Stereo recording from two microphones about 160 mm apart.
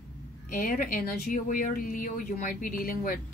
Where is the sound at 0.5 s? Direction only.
60° left (ahead or behind).